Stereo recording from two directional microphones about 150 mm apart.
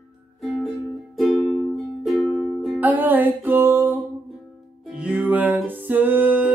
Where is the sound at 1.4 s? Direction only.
40° left (ahead or behind).